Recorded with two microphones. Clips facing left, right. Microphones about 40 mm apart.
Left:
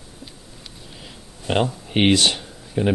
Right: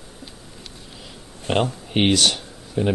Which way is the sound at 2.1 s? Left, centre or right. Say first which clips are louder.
Left 1 dB; left.